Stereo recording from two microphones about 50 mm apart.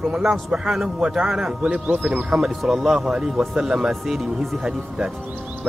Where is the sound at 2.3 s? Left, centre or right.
Centre.